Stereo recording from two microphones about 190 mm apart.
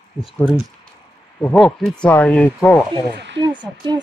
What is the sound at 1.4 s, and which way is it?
Speech, 5° left (ahead or behind).